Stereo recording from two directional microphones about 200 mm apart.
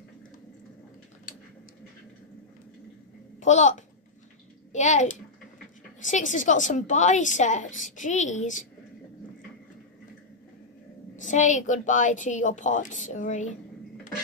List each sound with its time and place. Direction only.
3.3 s a woman's voice: 35° left (ahead or behind)
11.1 s a woman's voice: 40° left (ahead or behind)